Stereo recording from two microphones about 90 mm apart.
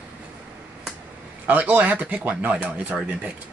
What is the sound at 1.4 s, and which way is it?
Speech, 20° right (ahead or behind).